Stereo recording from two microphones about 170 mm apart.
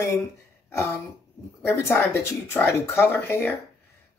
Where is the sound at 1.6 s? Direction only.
15° left (ahead or behind).